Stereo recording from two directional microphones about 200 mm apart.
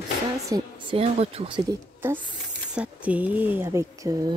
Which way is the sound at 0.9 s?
30° right (ahead or behind).